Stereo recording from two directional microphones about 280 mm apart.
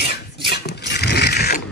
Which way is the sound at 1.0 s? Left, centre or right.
Left.